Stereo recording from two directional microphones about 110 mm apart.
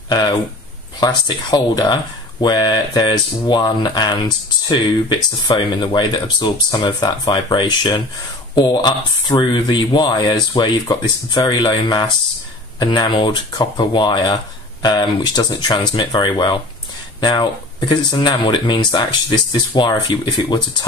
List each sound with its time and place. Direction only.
0.9 s speech: 40° left (ahead or behind)